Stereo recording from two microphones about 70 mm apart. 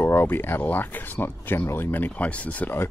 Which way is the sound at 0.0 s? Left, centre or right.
Left.